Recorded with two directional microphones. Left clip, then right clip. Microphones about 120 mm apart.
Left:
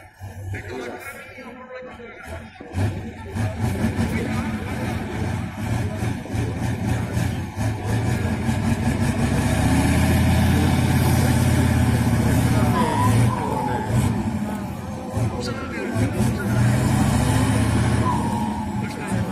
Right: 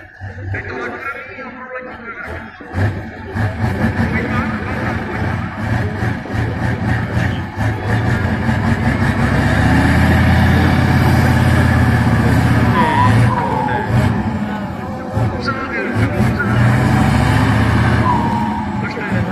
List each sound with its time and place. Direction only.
3.3 s vehicle: 15° left (ahead or behind)
5.7 s vehicle: 15° left (ahead or behind)
12.8 s vehicle: 15° right (ahead or behind)
13.1 s vehicle: 15° left (ahead or behind)
16.0 s vehicle: 15° left (ahead or behind)